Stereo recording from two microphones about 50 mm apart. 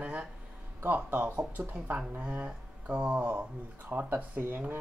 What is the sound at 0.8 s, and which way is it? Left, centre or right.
Speech, right.